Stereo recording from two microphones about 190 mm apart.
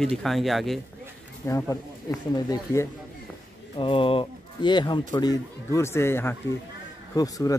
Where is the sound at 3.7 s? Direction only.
25° left (ahead or behind).